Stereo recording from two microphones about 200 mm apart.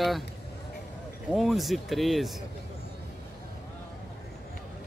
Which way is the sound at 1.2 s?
Centre (ahead or behind).